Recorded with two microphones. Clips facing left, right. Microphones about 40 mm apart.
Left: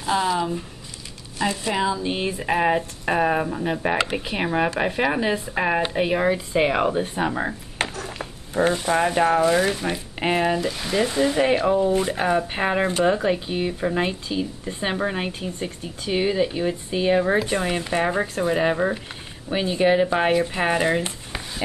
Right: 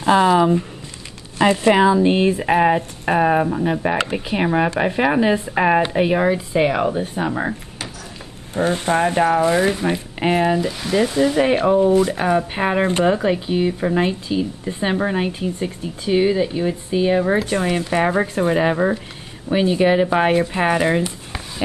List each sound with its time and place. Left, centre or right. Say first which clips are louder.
0.0 s speech: right 8 dB; right
1.4 s speech: right 9 dB; right
2.4 s speech: right 5 dB; centre
8.5 s speech: even; right
9.1 s speech: right 1 dB; centre
12.0 s speech: right 4 dB; centre
12.4 s speech: right 3 dB; centre
18.2 s speech: right 4 dB; right
18.5 s speech: right 3 dB; centre